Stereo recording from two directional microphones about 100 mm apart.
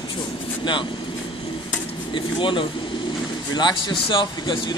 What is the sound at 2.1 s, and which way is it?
Speech, 55° left (ahead or behind).